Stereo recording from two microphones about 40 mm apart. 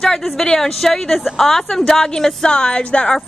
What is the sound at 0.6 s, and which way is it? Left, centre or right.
Speech, centre.